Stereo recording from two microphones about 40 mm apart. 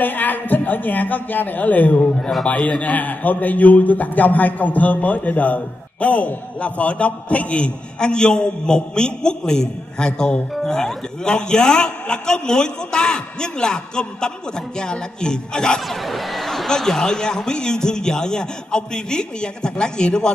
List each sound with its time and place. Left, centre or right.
0.0 s a man's voice: left
2.0 s a man's voice: centre
2.4 s a man's voice: left; by 15.8 s centre
15.9 s a man's voice: centre; by 20.2 s left